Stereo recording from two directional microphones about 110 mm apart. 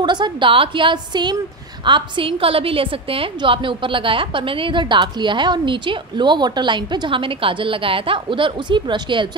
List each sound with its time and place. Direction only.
0.0 s a woman's voice: 45° right (ahead or behind)